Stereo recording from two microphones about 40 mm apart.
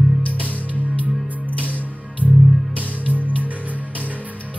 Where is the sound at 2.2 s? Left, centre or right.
Right.